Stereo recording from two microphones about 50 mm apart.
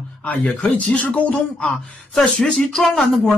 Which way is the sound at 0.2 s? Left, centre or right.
Left.